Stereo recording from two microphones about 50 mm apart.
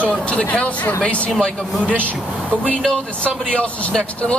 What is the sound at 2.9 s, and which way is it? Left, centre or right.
A man's voice, left.